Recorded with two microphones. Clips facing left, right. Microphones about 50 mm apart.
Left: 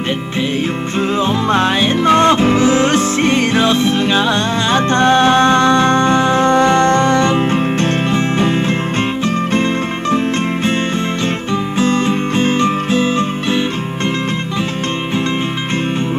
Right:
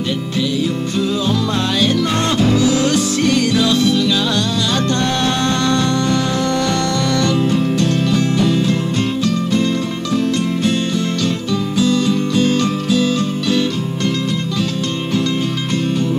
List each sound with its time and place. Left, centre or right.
1.2 s music: left
11.8 s music: left